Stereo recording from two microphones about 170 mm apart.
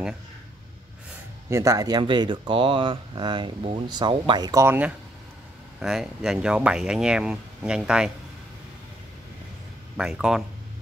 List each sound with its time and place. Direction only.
1.5 s speech: 20° right (ahead or behind)
9.9 s speech: 5° right (ahead or behind)